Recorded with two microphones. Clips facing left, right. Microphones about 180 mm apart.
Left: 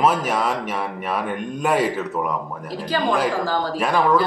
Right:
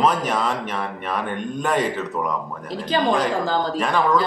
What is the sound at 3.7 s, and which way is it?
Speech, 5° left (ahead or behind).